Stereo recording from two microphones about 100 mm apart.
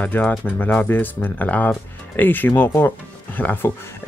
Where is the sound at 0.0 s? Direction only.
15° left (ahead or behind).